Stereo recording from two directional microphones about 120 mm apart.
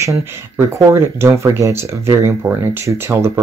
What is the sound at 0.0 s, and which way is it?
Speech, 25° right (ahead or behind).